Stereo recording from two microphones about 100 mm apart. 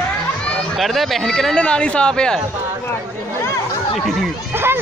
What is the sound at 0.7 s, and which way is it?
Speech, centre (ahead or behind).